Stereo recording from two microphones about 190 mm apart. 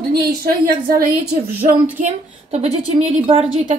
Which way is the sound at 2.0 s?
35° right (ahead or behind).